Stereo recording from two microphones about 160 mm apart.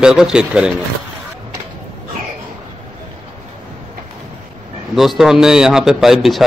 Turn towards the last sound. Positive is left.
turn(degrees=0)  # may be behind; listen again after turning